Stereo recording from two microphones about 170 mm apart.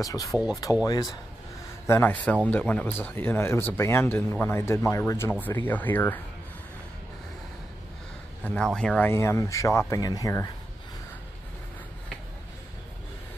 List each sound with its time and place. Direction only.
0.0 s speech: 20° left (ahead or behind)
1.9 s speech: 10° left (ahead or behind)
8.5 s speech: 5° left (ahead or behind); by 10.5 s 20° left (ahead or behind)